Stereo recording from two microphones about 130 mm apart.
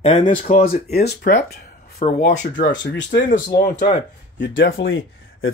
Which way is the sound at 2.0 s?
65° left (ahead or behind).